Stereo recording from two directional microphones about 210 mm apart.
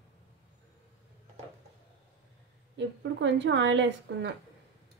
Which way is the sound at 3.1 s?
55° right (ahead or behind).